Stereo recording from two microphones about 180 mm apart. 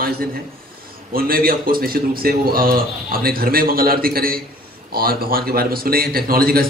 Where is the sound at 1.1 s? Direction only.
55° right (ahead or behind).